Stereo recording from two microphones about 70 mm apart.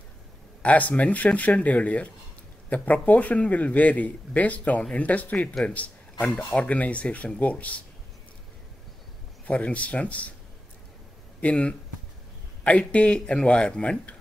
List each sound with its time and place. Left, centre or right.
0.6 s speech: left
9.5 s speech: centre
11.4 s a man's voice: centre